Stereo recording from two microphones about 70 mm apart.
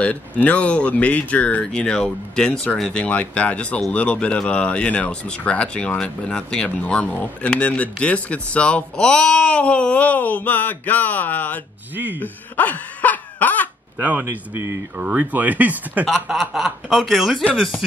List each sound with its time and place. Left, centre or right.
0.0 s speech: centre
11.9 s speech: right
12.2 s speech: left
13.9 s speech: right
16.1 s speech: centre